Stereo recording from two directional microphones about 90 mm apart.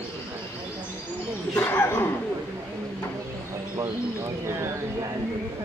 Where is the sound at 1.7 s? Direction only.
25° left (ahead or behind).